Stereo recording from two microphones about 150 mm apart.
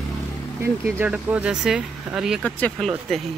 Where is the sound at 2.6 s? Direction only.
5° left (ahead or behind).